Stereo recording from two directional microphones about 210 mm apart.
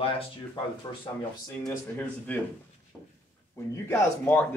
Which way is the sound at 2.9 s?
5° right (ahead or behind).